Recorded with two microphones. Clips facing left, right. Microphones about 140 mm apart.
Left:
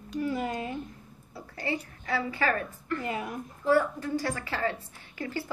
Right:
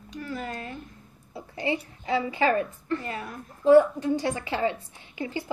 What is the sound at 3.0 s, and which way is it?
Speech, 15° left (ahead or behind).